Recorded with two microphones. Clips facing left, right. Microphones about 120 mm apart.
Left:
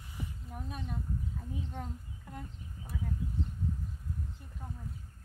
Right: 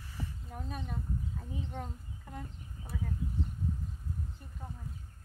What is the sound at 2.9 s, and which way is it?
Speech, 10° left (ahead or behind).